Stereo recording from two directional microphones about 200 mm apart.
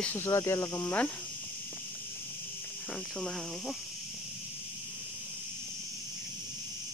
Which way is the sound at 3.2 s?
Centre (ahead or behind).